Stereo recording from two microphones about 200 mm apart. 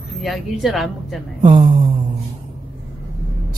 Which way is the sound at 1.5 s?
25° right (ahead or behind).